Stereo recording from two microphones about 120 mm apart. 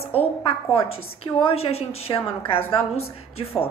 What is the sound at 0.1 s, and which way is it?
A woman's voice, 55° left (ahead or behind).